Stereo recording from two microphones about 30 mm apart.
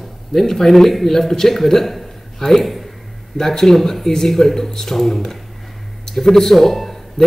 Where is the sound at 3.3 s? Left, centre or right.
Centre.